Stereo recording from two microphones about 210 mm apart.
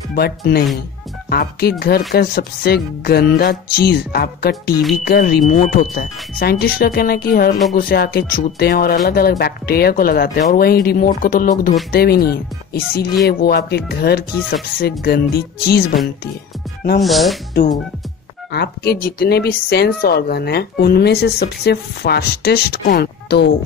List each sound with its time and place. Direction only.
0.1 s speech: 50° left (ahead or behind)
17.0 s speech: centre (ahead or behind)
18.5 s speech: 50° left (ahead or behind)